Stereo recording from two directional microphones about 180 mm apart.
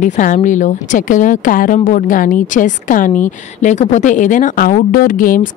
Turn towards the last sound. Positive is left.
turn(degrees=50)  # may be behind; listen again after turning